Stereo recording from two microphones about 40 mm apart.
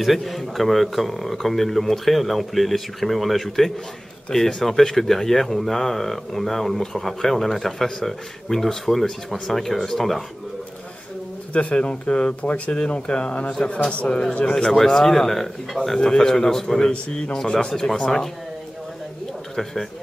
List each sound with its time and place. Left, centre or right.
0.0 s speech: centre
6.8 s speech: centre
7.1 s speech: centre
11.5 s speech: left
14.3 s speech: centre
19.5 s speech: centre